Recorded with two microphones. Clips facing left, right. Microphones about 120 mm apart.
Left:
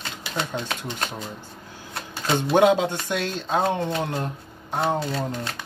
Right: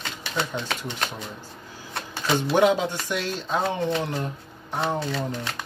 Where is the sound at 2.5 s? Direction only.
55° left (ahead or behind).